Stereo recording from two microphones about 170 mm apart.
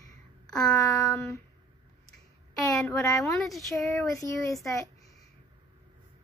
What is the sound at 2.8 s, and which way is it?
Speech, 15° left (ahead or behind).